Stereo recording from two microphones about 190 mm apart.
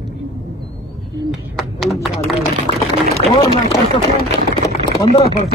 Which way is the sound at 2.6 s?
25° left (ahead or behind).